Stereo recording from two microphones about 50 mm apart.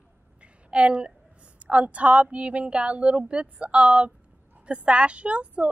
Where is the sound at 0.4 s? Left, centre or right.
Right.